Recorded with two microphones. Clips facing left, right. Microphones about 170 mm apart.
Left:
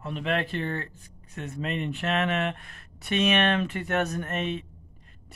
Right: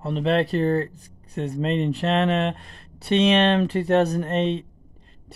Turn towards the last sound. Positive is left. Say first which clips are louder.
# right 7 dB
turn(degrees=-30)  # may be behind; listen again after turning